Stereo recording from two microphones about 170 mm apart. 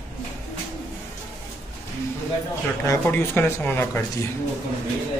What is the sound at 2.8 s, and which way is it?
Speech, 15° left (ahead or behind).